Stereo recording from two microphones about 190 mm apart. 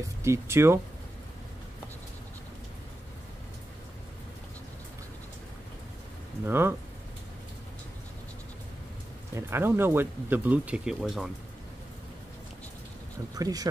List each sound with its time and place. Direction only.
0.0 s speech: 15° right (ahead or behind)
6.4 s speech: 10° right (ahead or behind)
9.3 s speech: 15° right (ahead or behind)
13.3 s speech: 20° right (ahead or behind)